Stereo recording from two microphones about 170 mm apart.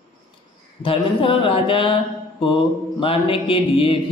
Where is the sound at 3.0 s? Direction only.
35° left (ahead or behind).